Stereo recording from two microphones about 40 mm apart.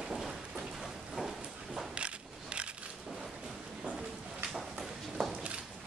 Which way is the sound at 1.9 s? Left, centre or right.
Right.